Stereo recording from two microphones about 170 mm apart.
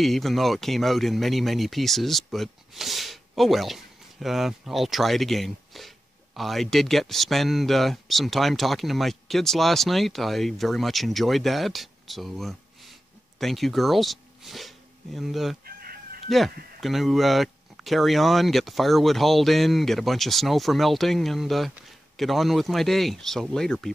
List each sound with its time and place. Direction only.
0.0 s speech: centre (ahead or behind)
15.6 s chicken: 60° right (ahead or behind)
16.3 s speech: centre (ahead or behind)